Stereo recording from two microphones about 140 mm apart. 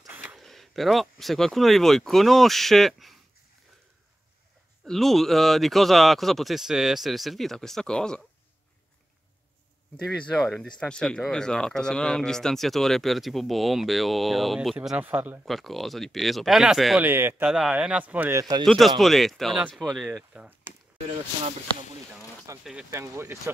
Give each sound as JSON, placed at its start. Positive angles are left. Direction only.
{"t": 0.1, "sound": "a sound", "side_deg": -10}
{"t": 0.4, "sound": "a sound", "side_deg": 0}
{"t": 1.2, "sound": "speech", "side_deg": 0}
{"t": 4.8, "sound": "speech", "side_deg": 0}
{"t": 10.0, "sound": "speech", "side_deg": 0}
{"t": 15.4, "sound": "speech", "side_deg": 0}
{"t": 17.0, "sound": "speech", "side_deg": -15}
{"t": 17.5, "sound": "speech", "side_deg": -5}
{"t": 18.4, "sound": "speech", "side_deg": -25}
{"t": 18.7, "sound": "speech", "side_deg": 0}
{"t": 22.6, "sound": "speech", "side_deg": -5}
{"t": 22.8, "sound": "speech", "side_deg": -20}